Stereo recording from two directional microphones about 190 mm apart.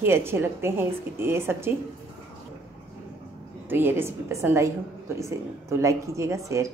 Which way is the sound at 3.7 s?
10° right (ahead or behind).